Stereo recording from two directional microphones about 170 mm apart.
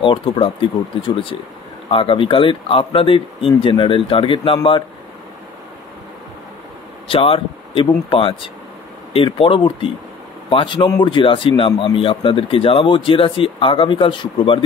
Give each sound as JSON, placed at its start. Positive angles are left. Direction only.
{"t": 0.0, "sound": "a man's voice", "side_deg": 30}
{"t": 7.1, "sound": "a man's voice", "side_deg": 35}